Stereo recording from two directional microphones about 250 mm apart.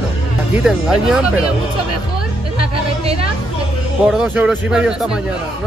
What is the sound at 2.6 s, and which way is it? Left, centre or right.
Music, right.